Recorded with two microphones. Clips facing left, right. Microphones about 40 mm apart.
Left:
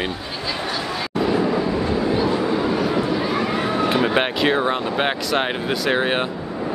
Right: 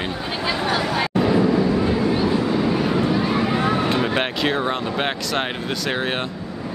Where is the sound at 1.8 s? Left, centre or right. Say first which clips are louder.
Even; centre.